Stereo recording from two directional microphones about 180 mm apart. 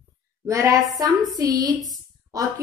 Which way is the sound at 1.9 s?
20° right (ahead or behind).